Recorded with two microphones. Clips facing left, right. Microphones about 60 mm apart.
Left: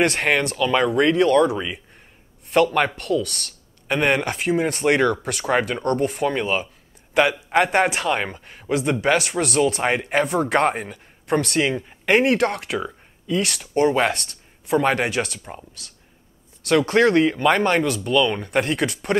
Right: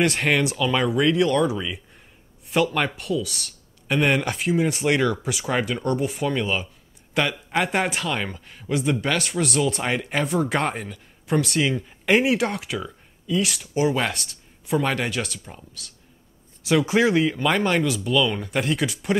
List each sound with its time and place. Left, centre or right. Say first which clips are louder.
0.0 s speech: left 1 dB; centre
2.5 s a man's voice: left 4 dB; centre
10.1 s a man's voice: left 3 dB; centre
16.6 s speech: left 3 dB; centre